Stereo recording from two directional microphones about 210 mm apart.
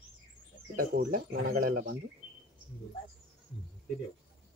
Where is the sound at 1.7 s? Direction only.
80° right.